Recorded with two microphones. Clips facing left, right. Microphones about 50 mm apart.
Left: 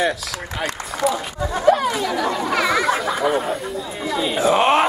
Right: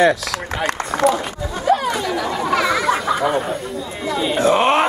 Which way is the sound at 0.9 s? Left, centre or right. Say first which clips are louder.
Right 5 dB; centre.